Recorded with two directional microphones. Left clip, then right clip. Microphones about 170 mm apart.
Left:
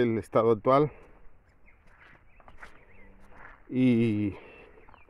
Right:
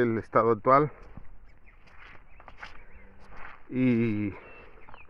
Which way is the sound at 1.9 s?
40° right (ahead or behind).